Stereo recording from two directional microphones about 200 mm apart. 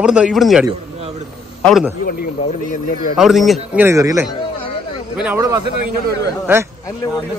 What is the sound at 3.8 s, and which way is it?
A man's voice, 15° right (ahead or behind).